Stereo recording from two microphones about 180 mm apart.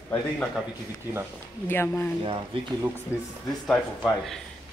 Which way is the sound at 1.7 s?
15° left (ahead or behind).